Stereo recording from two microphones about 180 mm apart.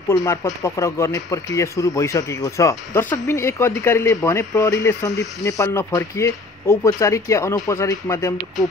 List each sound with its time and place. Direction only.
0.1 s speech: 15° left (ahead or behind)